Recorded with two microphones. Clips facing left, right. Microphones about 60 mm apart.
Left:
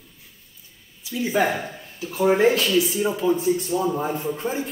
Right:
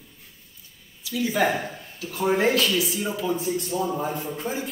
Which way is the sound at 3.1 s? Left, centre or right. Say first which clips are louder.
Left 5 dB; left.